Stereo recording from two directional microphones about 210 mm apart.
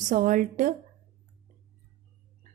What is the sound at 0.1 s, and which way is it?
Speech, 40° right (ahead or behind).